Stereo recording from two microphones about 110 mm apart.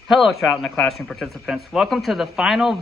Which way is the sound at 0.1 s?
Centre (ahead or behind).